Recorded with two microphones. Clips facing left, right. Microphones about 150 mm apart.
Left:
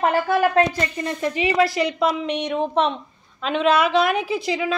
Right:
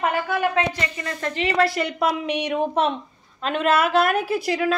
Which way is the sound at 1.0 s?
15° left (ahead or behind).